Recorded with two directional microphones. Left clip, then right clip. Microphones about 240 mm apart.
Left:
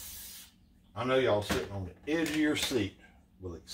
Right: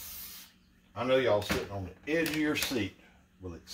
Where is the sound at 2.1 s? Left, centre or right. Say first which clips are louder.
Even; centre.